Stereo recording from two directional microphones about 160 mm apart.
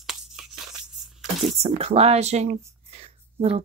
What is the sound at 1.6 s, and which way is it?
Speech, 40° right (ahead or behind).